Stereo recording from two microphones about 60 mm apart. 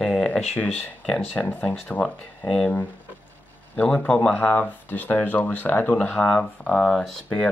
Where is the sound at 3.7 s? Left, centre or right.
Left.